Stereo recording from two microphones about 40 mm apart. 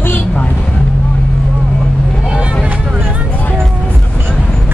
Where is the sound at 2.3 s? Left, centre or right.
Right.